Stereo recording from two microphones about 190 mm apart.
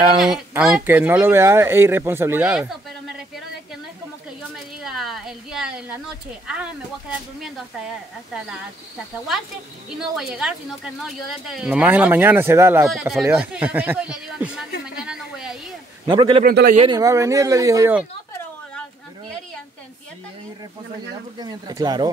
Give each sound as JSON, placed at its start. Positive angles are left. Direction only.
{"t": 0.2, "sound": "speech", "side_deg": -5}
{"t": 4.8, "sound": "a sound", "side_deg": 0}
{"t": 6.4, "sound": "speech", "side_deg": -5}
{"t": 9.8, "sound": "speech", "side_deg": -5}
{"t": 15.0, "sound": "a sound", "side_deg": -5}
{"t": 16.1, "sound": "speech", "side_deg": -25}
{"t": 16.4, "sound": "speech", "side_deg": -50}
{"t": 16.7, "sound": "speech", "side_deg": -30}
{"t": 17.0, "sound": "speech", "side_deg": -15}
{"t": 21.4, "sound": "speech", "side_deg": -20}